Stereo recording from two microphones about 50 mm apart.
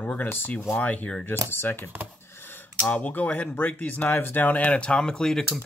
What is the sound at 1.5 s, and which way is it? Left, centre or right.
Speech, left.